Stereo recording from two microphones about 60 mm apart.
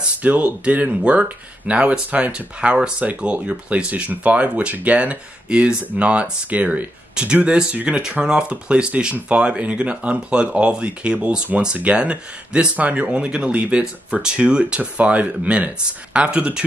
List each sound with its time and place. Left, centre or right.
0.0 s speech: right